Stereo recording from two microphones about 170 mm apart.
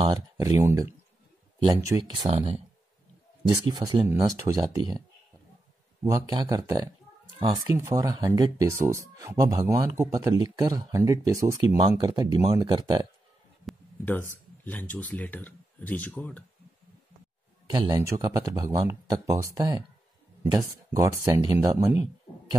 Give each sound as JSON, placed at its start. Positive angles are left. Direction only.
{"t": 0.0, "sound": "speech", "side_deg": -25}
{"t": 1.9, "sound": "speech", "side_deg": -25}
{"t": 2.2, "sound": "speech", "side_deg": -35}
{"t": 3.4, "sound": "speech", "side_deg": -25}
{"t": 6.0, "sound": "speech", "side_deg": -20}
{"t": 14.0, "sound": "speech", "side_deg": 10}
{"t": 17.6, "sound": "speech", "side_deg": -25}